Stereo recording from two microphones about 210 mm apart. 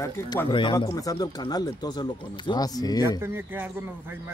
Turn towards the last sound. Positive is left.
turn(degrees=-10)  # may be behind; listen again after turning